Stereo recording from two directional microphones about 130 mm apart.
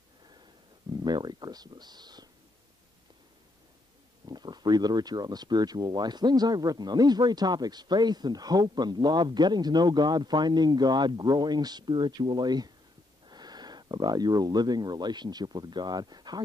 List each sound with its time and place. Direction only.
0.9 s speech: 35° right (ahead or behind)
4.3 s speech: 35° right (ahead or behind)